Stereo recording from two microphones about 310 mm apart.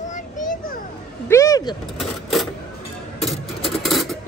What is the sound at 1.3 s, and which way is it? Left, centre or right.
Vehicle, centre.